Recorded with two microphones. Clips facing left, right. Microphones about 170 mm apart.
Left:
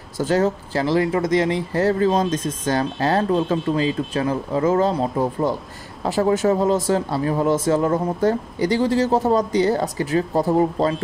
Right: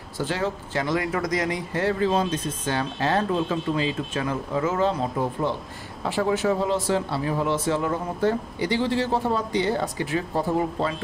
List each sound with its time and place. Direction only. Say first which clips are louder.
0.2 s speech: left 7 dB; 45° left (ahead or behind)
6.0 s speech: left 5 dB; 40° left (ahead or behind)